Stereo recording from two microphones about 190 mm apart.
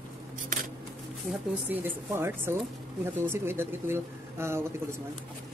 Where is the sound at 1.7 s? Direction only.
10° right (ahead or behind).